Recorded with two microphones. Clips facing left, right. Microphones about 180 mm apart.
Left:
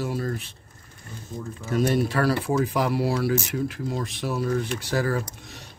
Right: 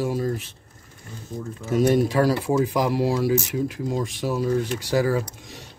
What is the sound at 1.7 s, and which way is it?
Speech, 15° right (ahead or behind).